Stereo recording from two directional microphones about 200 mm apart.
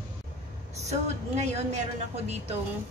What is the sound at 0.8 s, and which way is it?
Speech, 35° right (ahead or behind).